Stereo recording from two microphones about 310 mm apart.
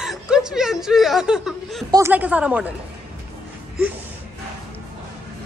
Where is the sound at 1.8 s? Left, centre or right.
Centre.